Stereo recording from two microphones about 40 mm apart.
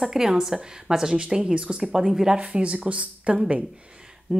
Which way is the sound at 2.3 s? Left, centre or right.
Right.